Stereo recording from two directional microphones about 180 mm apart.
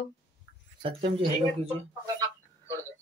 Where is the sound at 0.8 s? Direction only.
30° right (ahead or behind).